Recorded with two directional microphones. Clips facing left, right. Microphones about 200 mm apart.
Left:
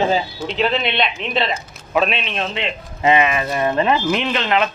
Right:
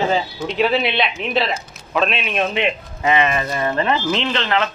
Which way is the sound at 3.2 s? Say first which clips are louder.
Left 1 dB; 5° left (ahead or behind).